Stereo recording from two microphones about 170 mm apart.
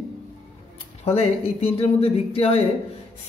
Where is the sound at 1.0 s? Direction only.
35° left (ahead or behind).